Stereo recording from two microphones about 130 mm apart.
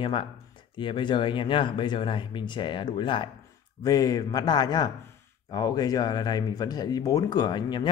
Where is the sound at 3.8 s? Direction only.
25° left (ahead or behind).